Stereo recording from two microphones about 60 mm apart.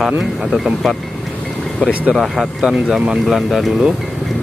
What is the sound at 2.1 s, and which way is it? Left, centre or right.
Speech, centre.